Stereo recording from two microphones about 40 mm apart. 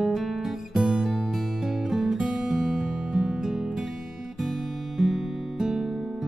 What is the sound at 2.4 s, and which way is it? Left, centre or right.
Music, centre.